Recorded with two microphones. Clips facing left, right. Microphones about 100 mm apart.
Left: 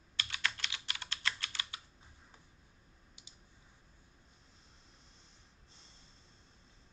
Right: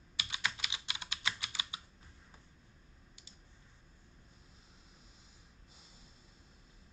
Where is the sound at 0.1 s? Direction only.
10° right (ahead or behind).